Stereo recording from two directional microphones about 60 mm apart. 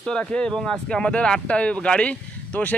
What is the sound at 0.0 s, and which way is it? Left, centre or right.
Speech, centre.